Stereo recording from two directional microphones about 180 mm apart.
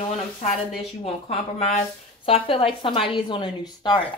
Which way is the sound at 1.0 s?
35° left (ahead or behind).